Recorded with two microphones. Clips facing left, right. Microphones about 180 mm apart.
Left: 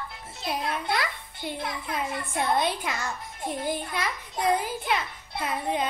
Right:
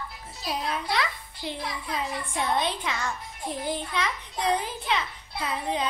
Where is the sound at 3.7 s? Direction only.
10° left (ahead or behind).